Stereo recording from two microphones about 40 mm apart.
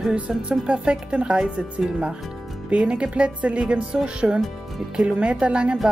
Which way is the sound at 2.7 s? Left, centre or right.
Right.